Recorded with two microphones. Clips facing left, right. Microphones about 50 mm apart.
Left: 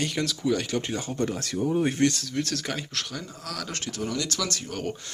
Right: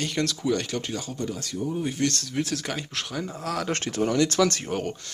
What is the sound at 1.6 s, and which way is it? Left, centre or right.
Speech, left.